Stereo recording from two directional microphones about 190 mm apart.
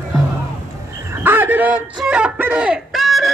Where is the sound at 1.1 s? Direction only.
10° right (ahead or behind).